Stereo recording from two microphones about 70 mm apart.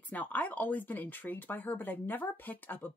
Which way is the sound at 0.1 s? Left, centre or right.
Left.